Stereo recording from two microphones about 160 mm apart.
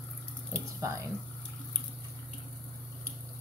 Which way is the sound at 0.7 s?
20° right (ahead or behind).